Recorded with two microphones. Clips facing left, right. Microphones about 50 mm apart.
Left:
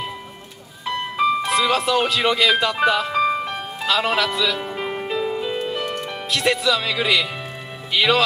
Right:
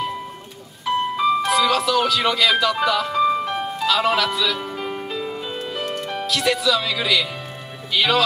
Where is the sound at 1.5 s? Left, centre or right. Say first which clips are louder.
Right 1 dB; left.